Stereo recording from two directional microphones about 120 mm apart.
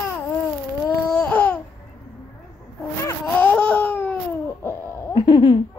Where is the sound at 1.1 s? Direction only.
10° left (ahead or behind).